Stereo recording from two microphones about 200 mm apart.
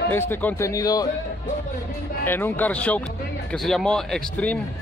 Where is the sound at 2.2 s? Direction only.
10° left (ahead or behind).